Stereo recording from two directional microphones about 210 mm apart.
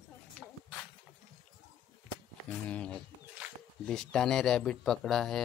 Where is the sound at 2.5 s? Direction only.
5° left (ahead or behind).